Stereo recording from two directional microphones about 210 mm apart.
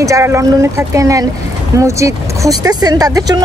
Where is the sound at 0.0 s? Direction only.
15° right (ahead or behind).